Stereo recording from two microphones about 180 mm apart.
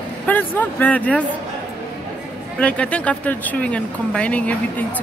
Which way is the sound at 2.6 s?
5° left (ahead or behind).